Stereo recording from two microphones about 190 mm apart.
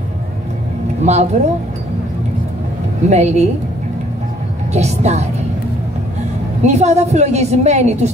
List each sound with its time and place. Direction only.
1.0 s a woman's voice: 35° right (ahead or behind)
3.1 s a woman's voice: 35° right (ahead or behind)
4.7 s a woman's voice: 35° right (ahead or behind)
6.6 s a woman's voice: 35° right (ahead or behind)